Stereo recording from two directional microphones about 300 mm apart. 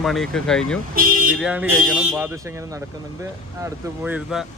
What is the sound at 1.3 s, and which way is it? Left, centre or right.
Speech, centre.